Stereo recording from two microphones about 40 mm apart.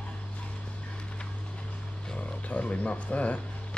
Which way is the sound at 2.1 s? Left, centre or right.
Left.